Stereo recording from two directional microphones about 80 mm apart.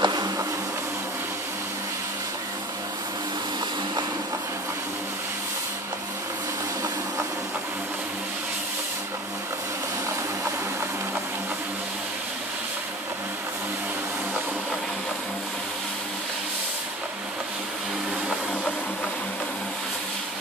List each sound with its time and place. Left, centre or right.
0.0 s printer: right